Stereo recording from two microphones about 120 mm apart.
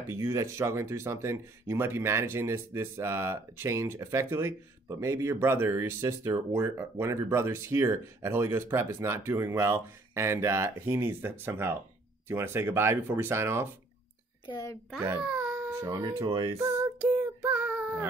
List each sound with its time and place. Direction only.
0.1 s speech: 25° right (ahead or behind)
14.5 s a child's voice: 30° left (ahead or behind)
15.2 s dog: 10° right (ahead or behind)
15.7 s speech: 25° right (ahead or behind)
17.2 s child singing: 15° right (ahead or behind)